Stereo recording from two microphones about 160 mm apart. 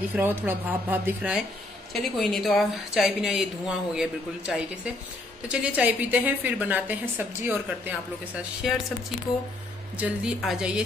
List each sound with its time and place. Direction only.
0.1 s a woman's voice: 10° right (ahead or behind)
2.0 s a woman's voice: centre (ahead or behind)
9.9 s a woman's voice: 5° right (ahead or behind)